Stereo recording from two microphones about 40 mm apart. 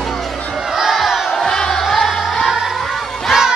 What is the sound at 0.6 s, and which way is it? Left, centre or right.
Crowd, centre.